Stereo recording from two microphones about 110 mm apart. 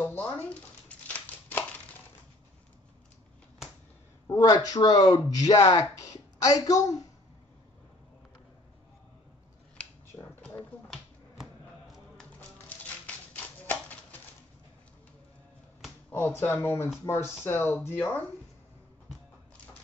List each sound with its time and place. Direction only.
0.0 s a sound: 15° left (ahead or behind)
4.4 s speech: 30° left (ahead or behind)
9.8 s scissors: 10° left (ahead or behind)
10.4 s a sound: 5° left (ahead or behind)
12.4 s music: 15° left (ahead or behind)
16.1 s speech: 20° left (ahead or behind)